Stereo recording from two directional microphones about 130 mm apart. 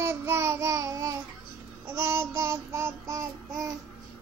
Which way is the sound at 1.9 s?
20° right (ahead or behind).